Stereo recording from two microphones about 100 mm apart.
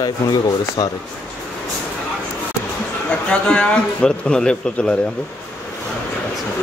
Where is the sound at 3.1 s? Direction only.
10° left (ahead or behind).